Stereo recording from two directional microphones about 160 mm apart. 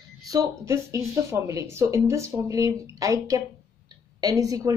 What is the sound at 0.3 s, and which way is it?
A woman's voice, 20° right (ahead or behind).